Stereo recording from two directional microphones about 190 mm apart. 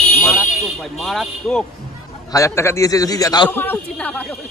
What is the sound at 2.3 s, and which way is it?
A man's voice, 15° left (ahead or behind).